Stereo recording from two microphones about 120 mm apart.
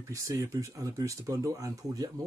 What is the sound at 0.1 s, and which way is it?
Speech, 25° right (ahead or behind).